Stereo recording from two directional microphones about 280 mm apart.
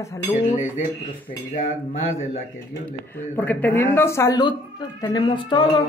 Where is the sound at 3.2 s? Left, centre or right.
Centre.